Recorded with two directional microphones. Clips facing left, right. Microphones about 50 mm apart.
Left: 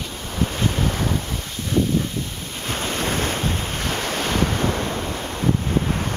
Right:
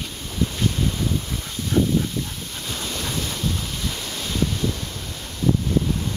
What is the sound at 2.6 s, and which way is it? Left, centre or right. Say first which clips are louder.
Waves: left 6 dB; left.